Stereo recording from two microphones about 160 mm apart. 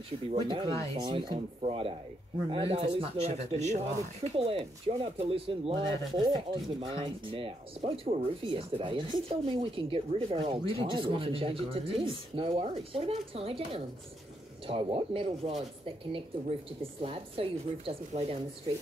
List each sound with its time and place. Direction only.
0.3 s speech: 30° right (ahead or behind)